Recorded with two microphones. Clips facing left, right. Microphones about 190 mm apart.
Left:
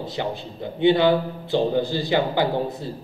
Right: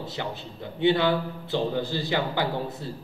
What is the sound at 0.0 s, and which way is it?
A man's voice, 15° left (ahead or behind).